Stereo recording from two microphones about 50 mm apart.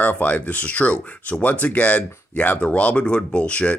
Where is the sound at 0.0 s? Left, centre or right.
Left.